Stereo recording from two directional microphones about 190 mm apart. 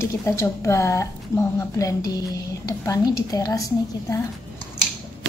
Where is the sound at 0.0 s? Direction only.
15° left (ahead or behind).